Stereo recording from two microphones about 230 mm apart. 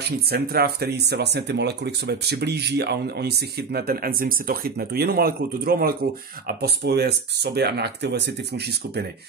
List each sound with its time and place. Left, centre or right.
0.3 s speech: right